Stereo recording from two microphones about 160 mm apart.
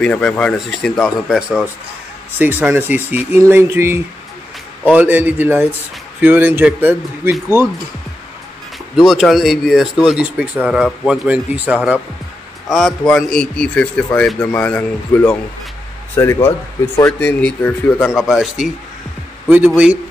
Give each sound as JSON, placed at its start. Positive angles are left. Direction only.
{"t": 0.0, "sound": "a man's voice", "side_deg": 5}
{"t": 2.3, "sound": "speech", "side_deg": -10}
{"t": 8.9, "sound": "a man's voice", "side_deg": 0}